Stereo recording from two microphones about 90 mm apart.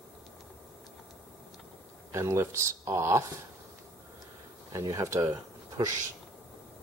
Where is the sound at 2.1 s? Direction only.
30° right (ahead or behind).